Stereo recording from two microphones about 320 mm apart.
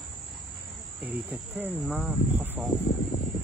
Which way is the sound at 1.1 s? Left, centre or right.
Centre.